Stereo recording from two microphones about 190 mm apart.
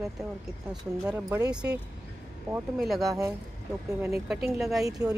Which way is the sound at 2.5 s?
Centre (ahead or behind).